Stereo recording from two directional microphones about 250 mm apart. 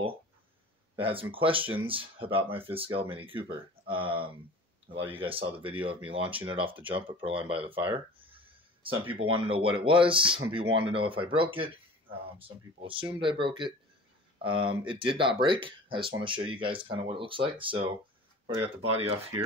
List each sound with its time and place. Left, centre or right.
0.9 s speech: right
18.8 s speech: right